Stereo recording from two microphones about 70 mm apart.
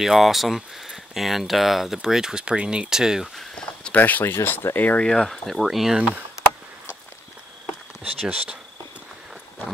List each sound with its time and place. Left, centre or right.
0.0 s speech: centre
3.9 s speech: left
5.0 s speech: centre
5.9 s speech: centre
8.3 s insect: centre